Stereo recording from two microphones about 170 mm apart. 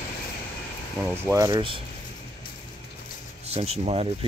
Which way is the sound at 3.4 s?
35° right (ahead or behind).